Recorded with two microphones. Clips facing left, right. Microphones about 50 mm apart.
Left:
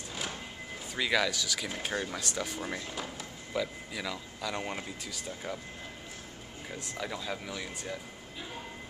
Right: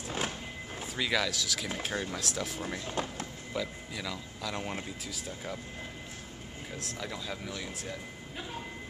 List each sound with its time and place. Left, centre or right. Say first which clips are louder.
0.9 s speech: left 2 dB; centre
2.9 s speech: right 4 dB; right
3.5 s speech: left 2 dB; centre
6.7 s speech: left 2 dB; centre